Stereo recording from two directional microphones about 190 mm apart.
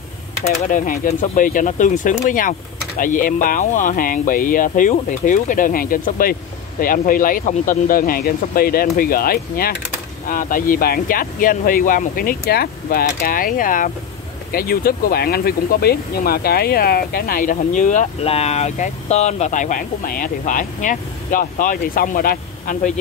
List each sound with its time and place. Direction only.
0.4 s speech: 40° left (ahead or behind)